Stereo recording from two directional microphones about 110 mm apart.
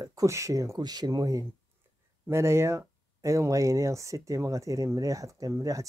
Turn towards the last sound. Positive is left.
turn(degrees=-30)  # may be behind; listen again after turning